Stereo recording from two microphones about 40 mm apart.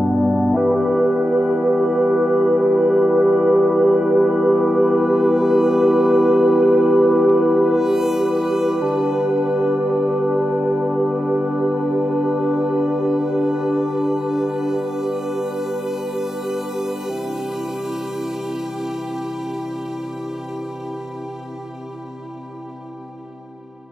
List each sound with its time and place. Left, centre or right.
0.4 s music: centre